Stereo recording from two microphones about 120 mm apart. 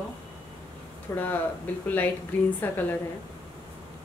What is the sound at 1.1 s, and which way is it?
Speech, 20° left (ahead or behind).